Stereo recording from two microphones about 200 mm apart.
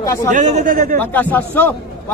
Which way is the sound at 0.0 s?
15° left (ahead or behind).